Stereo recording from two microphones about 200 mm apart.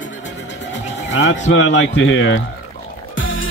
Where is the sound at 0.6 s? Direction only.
65° left (ahead or behind).